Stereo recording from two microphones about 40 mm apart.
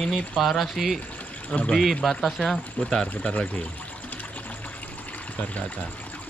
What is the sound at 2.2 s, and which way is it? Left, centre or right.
Speech, centre.